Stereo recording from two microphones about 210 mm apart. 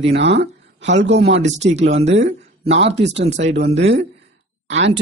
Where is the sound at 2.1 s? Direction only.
55° right (ahead or behind).